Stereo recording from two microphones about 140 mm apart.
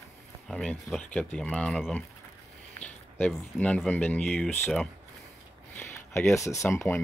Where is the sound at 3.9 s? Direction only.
10° left (ahead or behind).